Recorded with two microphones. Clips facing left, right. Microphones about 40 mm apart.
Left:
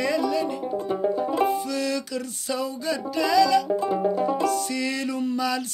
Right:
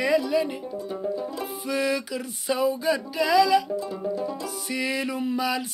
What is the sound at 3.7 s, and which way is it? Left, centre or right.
Music, left.